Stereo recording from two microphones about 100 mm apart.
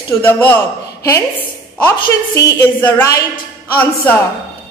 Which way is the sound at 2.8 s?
25° left (ahead or behind).